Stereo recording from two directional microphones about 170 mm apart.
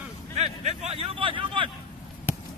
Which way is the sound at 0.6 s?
40° right (ahead or behind).